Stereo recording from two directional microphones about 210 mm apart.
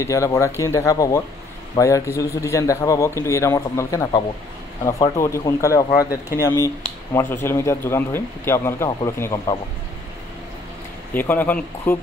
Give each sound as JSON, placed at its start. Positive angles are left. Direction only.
{"t": 0.0, "sound": "a man's voice", "side_deg": 15}
{"t": 11.1, "sound": "a man's voice", "side_deg": 10}